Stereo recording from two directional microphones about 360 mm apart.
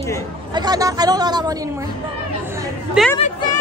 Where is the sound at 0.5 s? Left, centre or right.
Centre.